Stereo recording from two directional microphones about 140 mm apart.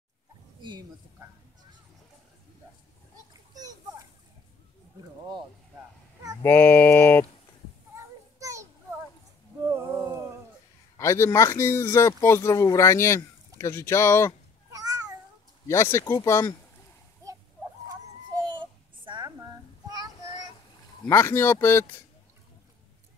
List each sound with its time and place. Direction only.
0.6 s a sound: 35° right (ahead or behind)
6.4 s speech: 15° left (ahead or behind)
7.9 s children playing: 20° right (ahead or behind)
9.6 s a sound: 20° right (ahead or behind)
11.0 s speech: 20° left (ahead or behind)
14.7 s cat: 25° right (ahead or behind)
15.7 s speech: 20° left (ahead or behind)
18.4 s a sound: 35° right (ahead or behind)
21.0 s speech: 20° left (ahead or behind)